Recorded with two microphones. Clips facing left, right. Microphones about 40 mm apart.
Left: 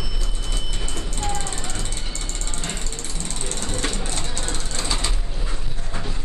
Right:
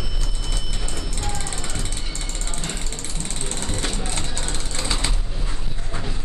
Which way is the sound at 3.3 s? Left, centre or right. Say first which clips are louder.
Even; right.